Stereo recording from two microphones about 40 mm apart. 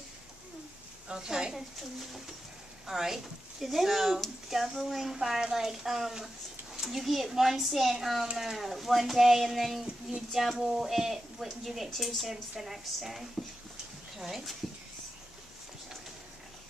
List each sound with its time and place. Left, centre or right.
1.0 s a child's voice: centre
1.5 s a woman's voice: centre